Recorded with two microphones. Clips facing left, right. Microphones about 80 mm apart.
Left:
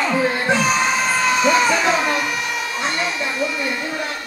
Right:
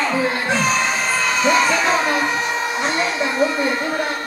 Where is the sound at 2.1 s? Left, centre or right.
Right.